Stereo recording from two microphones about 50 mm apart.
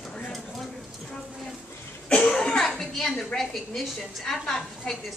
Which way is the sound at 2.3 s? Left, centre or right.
Centre.